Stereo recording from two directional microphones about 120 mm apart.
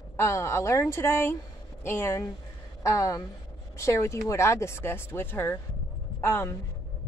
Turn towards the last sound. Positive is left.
turn(degrees=15)  # may be behind; listen again after turning